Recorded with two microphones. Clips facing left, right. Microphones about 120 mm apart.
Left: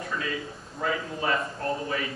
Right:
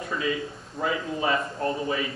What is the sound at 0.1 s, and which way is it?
A man's voice, 5° right (ahead or behind).